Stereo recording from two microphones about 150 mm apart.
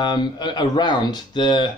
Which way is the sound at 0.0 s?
30° left (ahead or behind).